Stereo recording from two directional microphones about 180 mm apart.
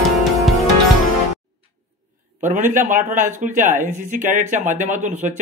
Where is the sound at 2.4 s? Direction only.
45° right (ahead or behind).